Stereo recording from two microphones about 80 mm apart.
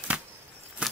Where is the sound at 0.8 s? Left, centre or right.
Centre.